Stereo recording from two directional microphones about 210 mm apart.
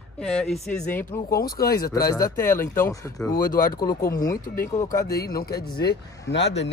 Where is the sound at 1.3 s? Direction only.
45° left (ahead or behind).